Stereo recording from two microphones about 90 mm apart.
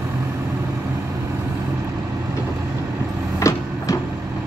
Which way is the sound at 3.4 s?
35° left (ahead or behind).